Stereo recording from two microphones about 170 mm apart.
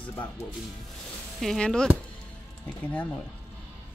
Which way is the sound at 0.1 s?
10° left (ahead or behind).